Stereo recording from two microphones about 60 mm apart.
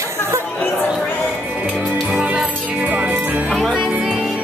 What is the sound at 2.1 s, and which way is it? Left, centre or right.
Music, right.